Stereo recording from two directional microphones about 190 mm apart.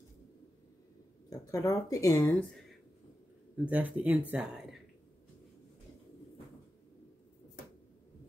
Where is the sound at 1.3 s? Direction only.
20° left (ahead or behind).